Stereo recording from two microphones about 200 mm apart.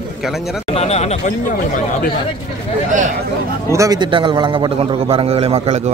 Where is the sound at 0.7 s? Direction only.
30° left (ahead or behind).